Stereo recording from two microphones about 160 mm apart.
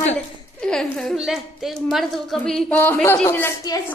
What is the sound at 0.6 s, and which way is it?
A woman's voice, 5° left (ahead or behind).